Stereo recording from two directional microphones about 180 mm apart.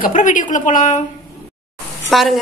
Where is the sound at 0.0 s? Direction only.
45° left (ahead or behind).